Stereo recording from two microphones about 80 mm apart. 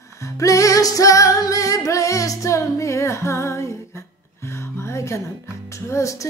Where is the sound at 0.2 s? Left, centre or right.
Left.